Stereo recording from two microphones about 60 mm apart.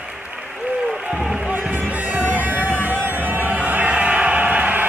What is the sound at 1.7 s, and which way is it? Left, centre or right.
Music, right.